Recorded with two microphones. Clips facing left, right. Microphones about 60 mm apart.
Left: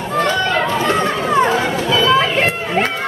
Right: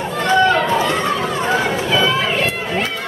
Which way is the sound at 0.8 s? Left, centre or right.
Left.